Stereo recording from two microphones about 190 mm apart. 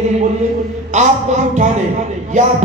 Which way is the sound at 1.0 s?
40° right (ahead or behind).